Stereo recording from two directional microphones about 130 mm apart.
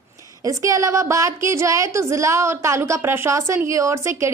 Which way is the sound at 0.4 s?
25° right (ahead or behind).